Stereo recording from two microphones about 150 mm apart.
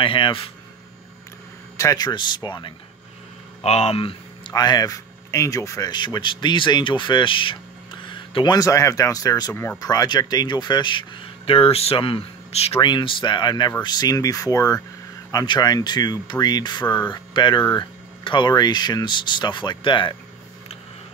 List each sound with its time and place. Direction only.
0.0 s speech: 35° left (ahead or behind)
1.8 s speech: 25° left (ahead or behind)
3.6 s speech: 45° left (ahead or behind)
4.5 s speech: 25° left (ahead or behind); by 12.8 s 40° left (ahead or behind)
12.8 s speech: 30° left (ahead or behind)